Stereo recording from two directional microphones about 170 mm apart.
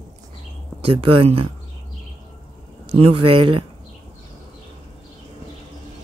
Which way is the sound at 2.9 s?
35° right (ahead or behind).